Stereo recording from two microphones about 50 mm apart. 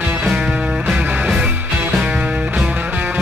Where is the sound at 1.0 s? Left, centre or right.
Right.